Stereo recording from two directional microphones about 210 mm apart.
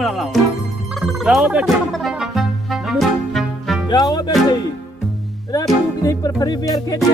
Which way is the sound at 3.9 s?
20° left (ahead or behind).